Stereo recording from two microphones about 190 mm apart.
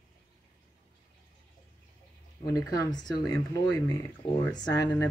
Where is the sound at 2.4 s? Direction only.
20° left (ahead or behind).